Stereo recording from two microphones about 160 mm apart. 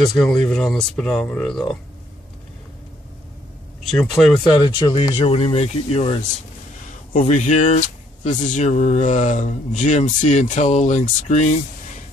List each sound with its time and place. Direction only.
0.5 s speech: 5° left (ahead or behind)
3.9 s speech: 5° left (ahead or behind)
4.5 s speech: 30° left (ahead or behind)
7.2 s speech: 50° left (ahead or behind)